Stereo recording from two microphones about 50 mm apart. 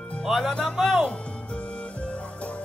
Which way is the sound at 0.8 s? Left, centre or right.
Centre.